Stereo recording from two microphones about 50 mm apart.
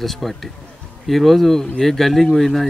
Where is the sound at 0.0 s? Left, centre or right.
Centre.